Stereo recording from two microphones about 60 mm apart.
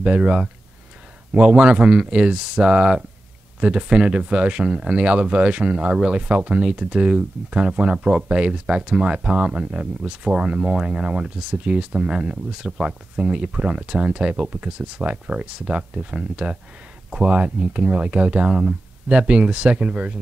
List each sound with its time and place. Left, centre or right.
0.0 s speech: centre